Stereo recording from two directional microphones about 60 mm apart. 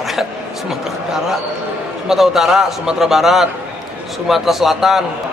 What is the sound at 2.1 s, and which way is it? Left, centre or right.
A man's voice, centre.